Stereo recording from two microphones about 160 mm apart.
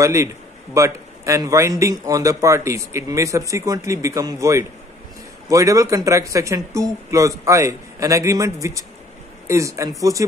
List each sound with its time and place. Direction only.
0.0 s a man's voice: 20° right (ahead or behind)